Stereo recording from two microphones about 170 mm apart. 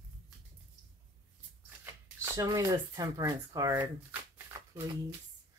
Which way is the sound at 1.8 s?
20° right (ahead or behind).